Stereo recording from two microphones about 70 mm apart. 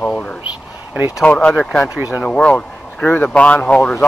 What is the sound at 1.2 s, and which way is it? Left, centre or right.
Speech, centre.